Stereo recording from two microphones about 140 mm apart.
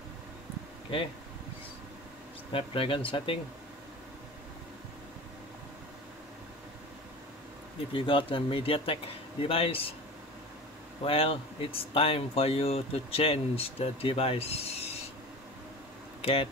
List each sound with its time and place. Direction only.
2.5 s speech: 40° left (ahead or behind)
7.9 s speech: 40° left (ahead or behind)
11.1 s speech: 40° left (ahead or behind)
16.2 s speech: 45° left (ahead or behind)